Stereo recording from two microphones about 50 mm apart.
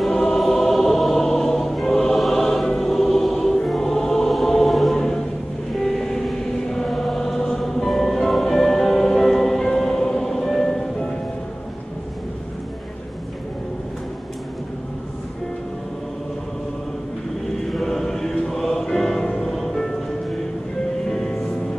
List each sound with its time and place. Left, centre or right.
0.3 s choir: centre
17.7 s chant: centre
18.6 s music: centre